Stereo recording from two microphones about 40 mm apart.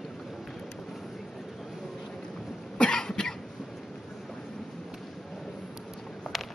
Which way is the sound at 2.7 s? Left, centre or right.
Left.